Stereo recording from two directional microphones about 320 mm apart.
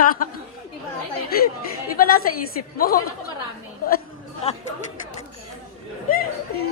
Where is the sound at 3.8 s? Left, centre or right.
Left.